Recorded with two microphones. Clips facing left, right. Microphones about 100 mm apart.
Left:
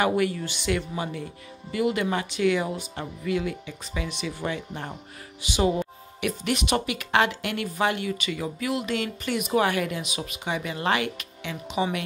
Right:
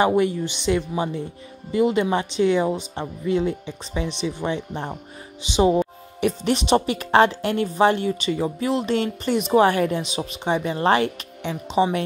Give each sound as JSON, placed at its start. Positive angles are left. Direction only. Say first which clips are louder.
{"t": 0.0, "sound": "speech", "louder": "right 5 dB", "side_deg": -25}